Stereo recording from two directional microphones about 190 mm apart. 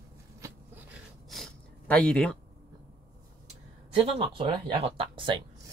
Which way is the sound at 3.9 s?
30° right (ahead or behind).